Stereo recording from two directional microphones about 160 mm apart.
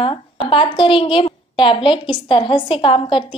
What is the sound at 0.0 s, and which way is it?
A woman's voice, 35° left (ahead or behind).